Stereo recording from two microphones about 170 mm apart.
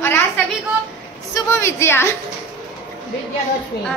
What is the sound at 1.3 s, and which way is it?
Speech, 15° left (ahead or behind).